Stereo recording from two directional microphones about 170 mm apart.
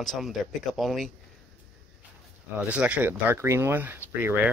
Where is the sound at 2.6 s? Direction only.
5° right (ahead or behind).